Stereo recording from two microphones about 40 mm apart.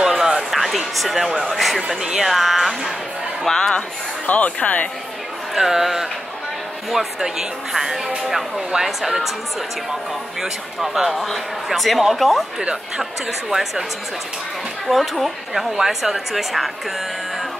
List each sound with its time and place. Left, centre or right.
0.2 s a sound: centre
0.5 s a sound: centre
1.4 s speech: centre
1.9 s speech: centre
2.2 s speech: centre
3.4 s speech: centre
4.6 s a woman's voice: left
5.5 s speech: centre
10.4 s speech: centre
11.1 s speech: centre
13.5 s speech: centre
14.9 s speech: centre